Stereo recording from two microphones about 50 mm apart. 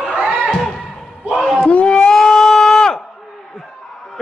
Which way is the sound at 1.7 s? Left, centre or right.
Left.